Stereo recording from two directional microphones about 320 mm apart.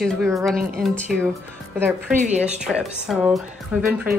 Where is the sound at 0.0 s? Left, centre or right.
Centre.